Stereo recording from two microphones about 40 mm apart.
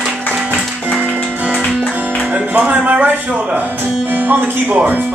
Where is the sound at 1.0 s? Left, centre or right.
Right.